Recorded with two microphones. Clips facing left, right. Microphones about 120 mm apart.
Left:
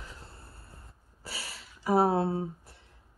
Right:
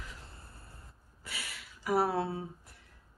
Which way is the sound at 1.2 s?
30° left (ahead or behind).